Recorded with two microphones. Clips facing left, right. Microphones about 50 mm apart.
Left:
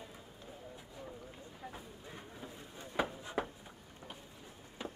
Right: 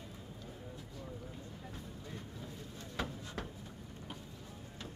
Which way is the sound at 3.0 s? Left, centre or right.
Centre.